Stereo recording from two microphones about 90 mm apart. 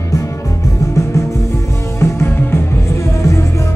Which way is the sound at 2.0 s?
30° left (ahead or behind).